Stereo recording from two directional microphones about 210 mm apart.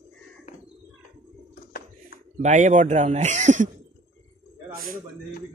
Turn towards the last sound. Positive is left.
turn(degrees=-40)  # may be behind; listen again after turning